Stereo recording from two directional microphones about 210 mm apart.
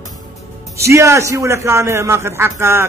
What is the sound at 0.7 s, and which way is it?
Speech, 15° right (ahead or behind).